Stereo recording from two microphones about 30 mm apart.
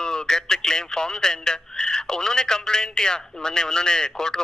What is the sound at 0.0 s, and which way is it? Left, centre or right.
Speech, left.